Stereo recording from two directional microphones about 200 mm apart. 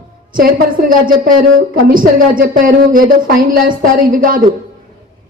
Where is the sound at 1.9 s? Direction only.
45° right (ahead or behind).